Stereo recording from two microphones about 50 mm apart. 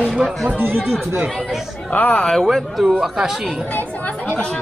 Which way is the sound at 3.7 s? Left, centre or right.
Left.